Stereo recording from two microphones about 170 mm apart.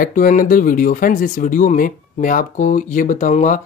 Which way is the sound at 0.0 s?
55° left (ahead or behind).